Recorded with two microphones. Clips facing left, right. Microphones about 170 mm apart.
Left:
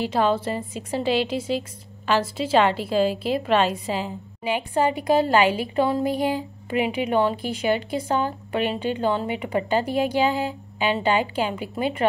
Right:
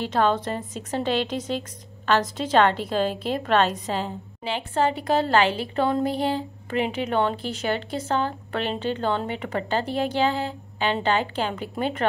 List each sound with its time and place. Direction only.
0.0 s a woman's voice: 10° left (ahead or behind)